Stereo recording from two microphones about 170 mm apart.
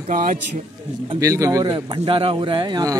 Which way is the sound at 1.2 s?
20° right (ahead or behind).